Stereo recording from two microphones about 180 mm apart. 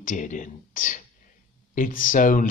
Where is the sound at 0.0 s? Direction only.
45° left (ahead or behind).